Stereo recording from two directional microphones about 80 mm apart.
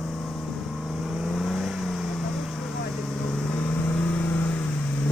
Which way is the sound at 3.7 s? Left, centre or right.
Centre.